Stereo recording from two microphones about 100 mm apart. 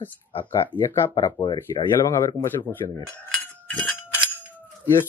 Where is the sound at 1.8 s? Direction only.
75° left (ahead or behind).